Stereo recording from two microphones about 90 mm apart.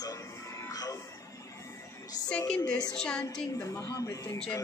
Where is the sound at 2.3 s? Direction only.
10° left (ahead or behind).